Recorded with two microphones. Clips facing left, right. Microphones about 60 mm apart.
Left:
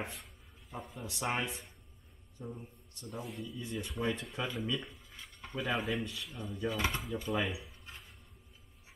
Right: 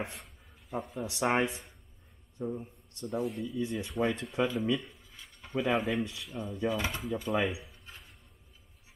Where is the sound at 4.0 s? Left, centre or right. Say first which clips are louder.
Right 7 dB; right.